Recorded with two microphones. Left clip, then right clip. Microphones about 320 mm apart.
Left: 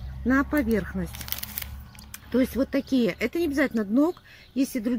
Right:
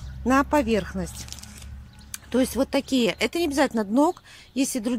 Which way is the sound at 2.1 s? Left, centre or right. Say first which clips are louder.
Right 1 dB; centre.